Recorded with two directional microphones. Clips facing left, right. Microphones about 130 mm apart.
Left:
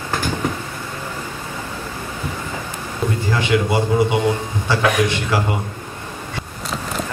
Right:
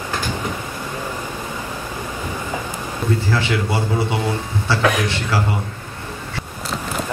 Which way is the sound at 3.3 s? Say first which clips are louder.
Left 3 dB; 15° left (ahead or behind).